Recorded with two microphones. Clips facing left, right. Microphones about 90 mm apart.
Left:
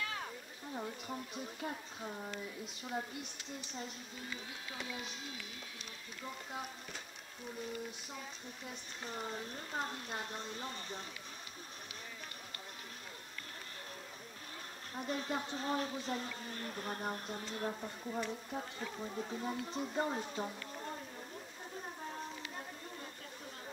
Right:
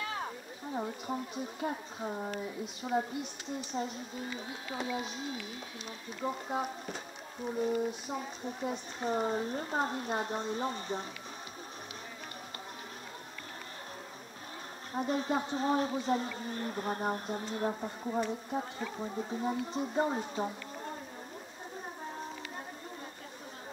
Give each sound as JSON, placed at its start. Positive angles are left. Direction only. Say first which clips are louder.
{"t": 0.0, "sound": "a sound", "louder": "right 5 dB", "side_deg": -30}
{"t": 1.3, "sound": "speech", "louder": "right 6 dB", "side_deg": -20}
{"t": 4.5, "sound": "speech", "louder": "right 8 dB", "side_deg": -30}
{"t": 6.2, "sound": "speech", "louder": "right 10 dB", "side_deg": -40}
{"t": 15.0, "sound": "speech", "louder": "right 7 dB", "side_deg": -20}